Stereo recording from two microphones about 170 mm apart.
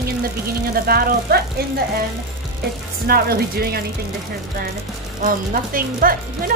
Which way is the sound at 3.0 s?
65° right (ahead or behind).